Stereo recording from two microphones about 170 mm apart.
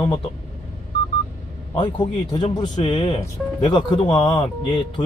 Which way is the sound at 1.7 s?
30° left (ahead or behind).